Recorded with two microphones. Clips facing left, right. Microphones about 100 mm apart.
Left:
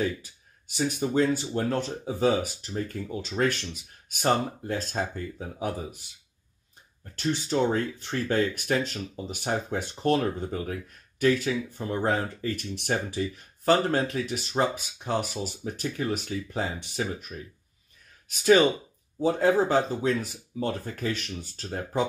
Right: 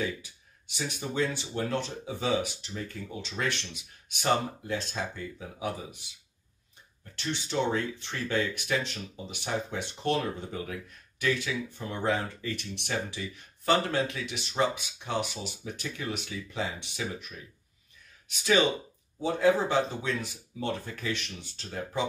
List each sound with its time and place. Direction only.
0.0 s speech: 45° left (ahead or behind)
7.2 s speech: 45° left (ahead or behind)
18.3 s speech: 45° left (ahead or behind)